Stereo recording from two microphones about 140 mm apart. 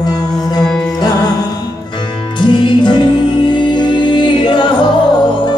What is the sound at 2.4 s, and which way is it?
Music, 35° left (ahead or behind).